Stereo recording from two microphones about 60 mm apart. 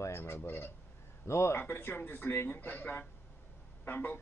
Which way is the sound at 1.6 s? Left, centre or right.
Left.